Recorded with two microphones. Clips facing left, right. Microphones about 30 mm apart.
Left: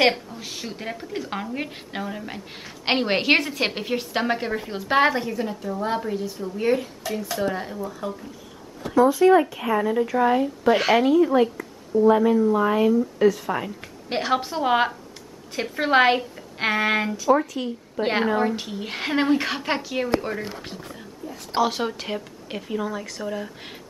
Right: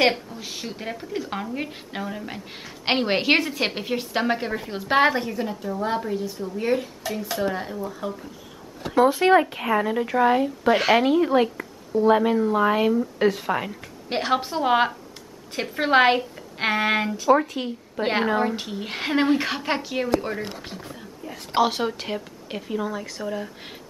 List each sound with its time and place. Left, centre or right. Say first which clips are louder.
0.0 s speech: left 1 dB; centre
9.2 s a woman's voice: left 1 dB; right
10.1 s a woman's voice: right 4 dB; centre
11.1 s speech: left 1 dB; right
12.7 s speech: left 2 dB; right
13.2 s speech: left 2 dB; right
13.5 s speech: right 1 dB; right
14.0 s speech: even; centre
17.2 s a woman's voice: right 2 dB; centre